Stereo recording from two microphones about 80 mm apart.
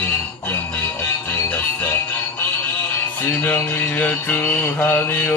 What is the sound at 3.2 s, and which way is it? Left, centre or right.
Mantra, left.